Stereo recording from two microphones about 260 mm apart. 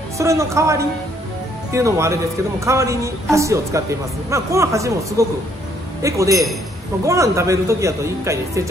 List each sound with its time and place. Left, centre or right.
0.2 s speech: centre